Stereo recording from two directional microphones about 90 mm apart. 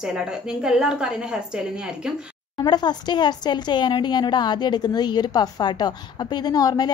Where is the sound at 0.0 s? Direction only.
10° right (ahead or behind).